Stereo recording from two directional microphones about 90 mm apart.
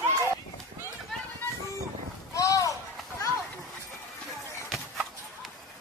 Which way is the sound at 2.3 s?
40° left (ahead or behind).